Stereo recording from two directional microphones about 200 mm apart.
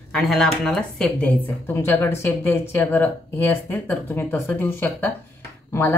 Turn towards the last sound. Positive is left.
turn(degrees=10)  # may be behind; listen again after turning